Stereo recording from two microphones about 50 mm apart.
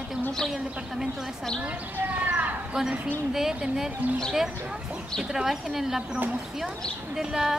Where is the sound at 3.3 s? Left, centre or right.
Centre.